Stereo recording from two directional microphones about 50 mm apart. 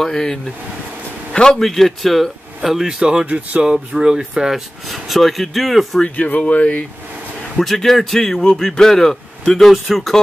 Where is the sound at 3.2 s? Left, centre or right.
Right.